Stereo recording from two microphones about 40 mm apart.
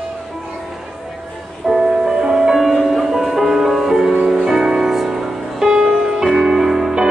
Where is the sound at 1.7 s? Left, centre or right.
Centre.